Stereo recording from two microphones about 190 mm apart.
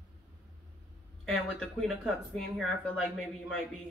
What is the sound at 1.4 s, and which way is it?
Speech, centre (ahead or behind).